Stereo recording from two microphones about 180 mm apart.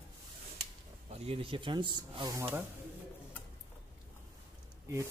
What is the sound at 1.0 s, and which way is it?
Speech, 35° right (ahead or behind).